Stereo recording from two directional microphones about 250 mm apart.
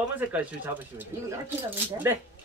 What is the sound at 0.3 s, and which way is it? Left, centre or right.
Speech, centre.